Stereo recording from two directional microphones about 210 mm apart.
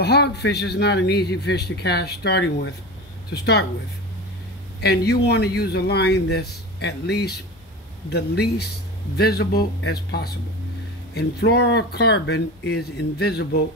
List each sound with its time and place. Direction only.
0.0 s a man's voice: 50° left (ahead or behind)
4.8 s a man's voice: 50° left (ahead or behind)